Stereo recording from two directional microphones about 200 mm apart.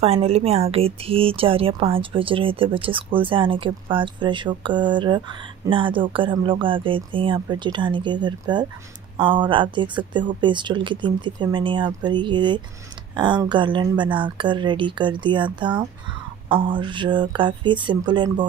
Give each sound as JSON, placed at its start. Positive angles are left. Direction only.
{"t": 0.0, "sound": "speech", "side_deg": -30}